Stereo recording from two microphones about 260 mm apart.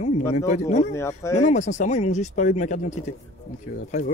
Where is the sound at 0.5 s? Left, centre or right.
Left.